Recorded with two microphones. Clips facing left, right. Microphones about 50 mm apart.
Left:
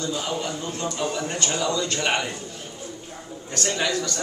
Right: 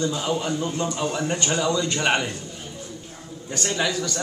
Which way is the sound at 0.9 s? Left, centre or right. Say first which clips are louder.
Right 2 dB; centre.